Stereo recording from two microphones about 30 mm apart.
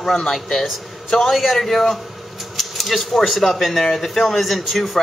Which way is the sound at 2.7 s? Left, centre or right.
Centre.